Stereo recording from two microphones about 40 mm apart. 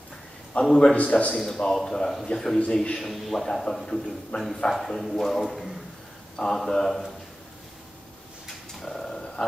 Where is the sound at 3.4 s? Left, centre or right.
Centre.